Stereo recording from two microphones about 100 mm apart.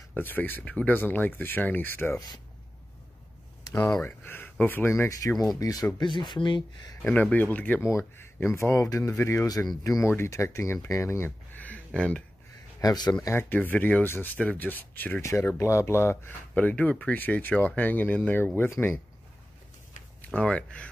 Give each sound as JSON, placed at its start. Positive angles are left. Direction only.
{"t": 0.1, "sound": "speech", "side_deg": 20}
{"t": 2.1, "sound": "speech", "side_deg": 40}
{"t": 3.6, "sound": "a sound", "side_deg": 40}
{"t": 4.0, "sound": "speech", "side_deg": 20}
{"t": 5.5, "sound": "speech", "side_deg": 40}
{"t": 7.0, "sound": "speech", "side_deg": 10}
{"t": 7.9, "sound": "speech", "side_deg": 25}
{"t": 12.8, "sound": "speech", "side_deg": 45}
{"t": 13.2, "sound": "speech", "side_deg": 25}
{"t": 15.2, "sound": "speech", "side_deg": 30}
{"t": 20.2, "sound": "speech", "side_deg": 10}